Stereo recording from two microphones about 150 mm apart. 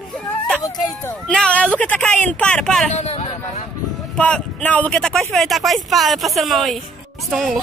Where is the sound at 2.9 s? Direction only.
45° left (ahead or behind).